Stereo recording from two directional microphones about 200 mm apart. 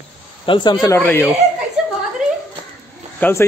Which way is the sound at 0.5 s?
25° left (ahead or behind).